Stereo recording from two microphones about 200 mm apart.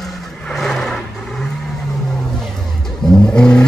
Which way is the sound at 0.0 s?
Centre (ahead or behind).